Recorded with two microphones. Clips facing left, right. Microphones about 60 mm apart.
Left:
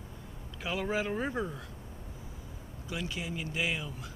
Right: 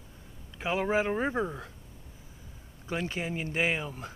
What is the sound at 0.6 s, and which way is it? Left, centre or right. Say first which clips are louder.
Speech: right 5 dB; right.